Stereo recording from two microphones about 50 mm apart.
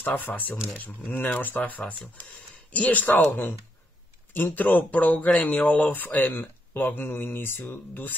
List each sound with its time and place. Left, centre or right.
0.0 s speech: left